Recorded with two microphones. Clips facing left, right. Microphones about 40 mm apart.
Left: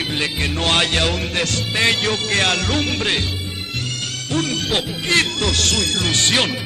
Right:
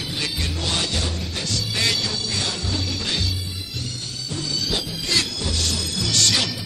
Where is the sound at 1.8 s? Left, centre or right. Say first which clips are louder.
Left 7 dB; left.